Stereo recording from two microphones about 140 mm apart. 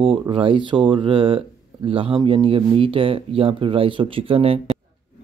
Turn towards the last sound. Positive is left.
turn(degrees=-40)  # may be behind; listen again after turning